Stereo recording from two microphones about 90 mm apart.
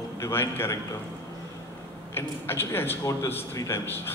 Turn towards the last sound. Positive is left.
turn(degrees=25)  # may be behind; listen again after turning